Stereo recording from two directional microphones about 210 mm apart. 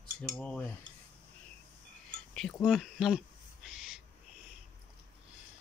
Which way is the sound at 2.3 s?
5° left (ahead or behind).